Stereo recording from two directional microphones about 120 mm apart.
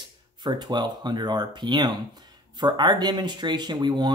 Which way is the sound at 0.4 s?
35° right (ahead or behind).